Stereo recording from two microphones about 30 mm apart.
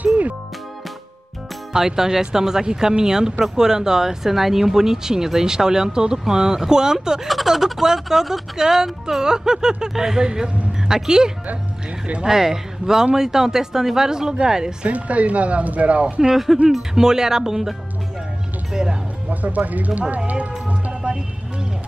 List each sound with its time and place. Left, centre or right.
1.7 s speech: centre
14.9 s speech: right
16.5 s speech: centre
16.9 s speech: right
19.2 s speech: right